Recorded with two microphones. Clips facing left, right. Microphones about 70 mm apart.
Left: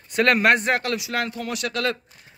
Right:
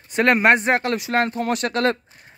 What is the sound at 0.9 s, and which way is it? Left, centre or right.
Speech, right.